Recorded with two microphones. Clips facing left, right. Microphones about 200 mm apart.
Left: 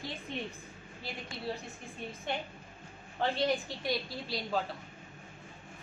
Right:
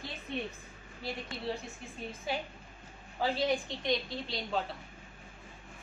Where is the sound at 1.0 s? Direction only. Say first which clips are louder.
Right 2 dB; centre (ahead or behind).